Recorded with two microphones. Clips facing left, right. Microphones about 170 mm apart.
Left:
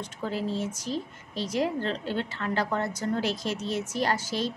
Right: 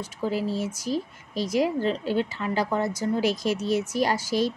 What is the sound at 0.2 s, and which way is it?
Speech, 10° right (ahead or behind).